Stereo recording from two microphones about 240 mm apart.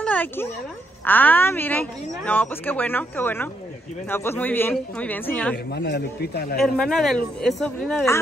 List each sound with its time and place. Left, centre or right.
0.0 s a sound: centre
1.0 s speech: centre
5.7 s a man's voice: left
6.6 s speech: centre